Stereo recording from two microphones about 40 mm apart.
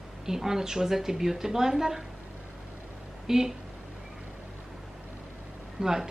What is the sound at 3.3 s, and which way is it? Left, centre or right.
Speech, centre.